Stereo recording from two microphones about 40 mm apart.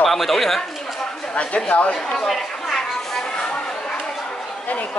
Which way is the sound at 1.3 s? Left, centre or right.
Left.